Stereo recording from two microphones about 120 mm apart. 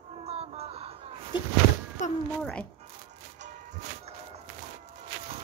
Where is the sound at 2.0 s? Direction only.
90° left.